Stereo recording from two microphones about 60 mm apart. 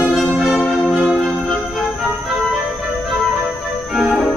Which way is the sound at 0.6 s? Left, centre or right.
Centre.